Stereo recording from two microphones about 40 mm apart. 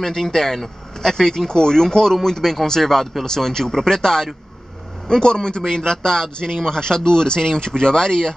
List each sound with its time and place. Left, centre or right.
0.0 s speech: centre